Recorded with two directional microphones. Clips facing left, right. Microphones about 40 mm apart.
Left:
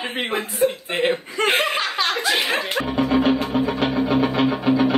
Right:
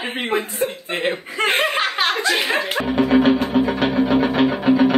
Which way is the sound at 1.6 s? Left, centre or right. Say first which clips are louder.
Right 2 dB; right.